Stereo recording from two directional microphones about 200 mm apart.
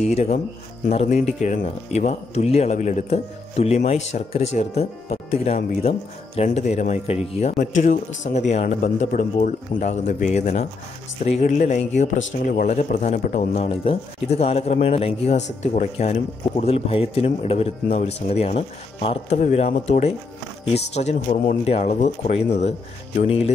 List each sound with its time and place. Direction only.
0.0 s speech: 30° left (ahead or behind)